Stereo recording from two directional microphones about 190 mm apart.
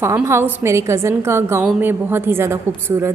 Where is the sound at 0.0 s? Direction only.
15° right (ahead or behind).